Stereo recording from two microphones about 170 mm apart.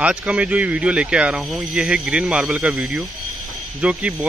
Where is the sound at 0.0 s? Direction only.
5° right (ahead or behind).